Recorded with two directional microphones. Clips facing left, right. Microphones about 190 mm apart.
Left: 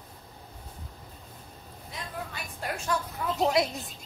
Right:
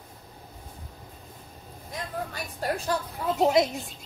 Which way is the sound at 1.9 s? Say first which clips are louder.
Right 4 dB; 40° right (ahead or behind).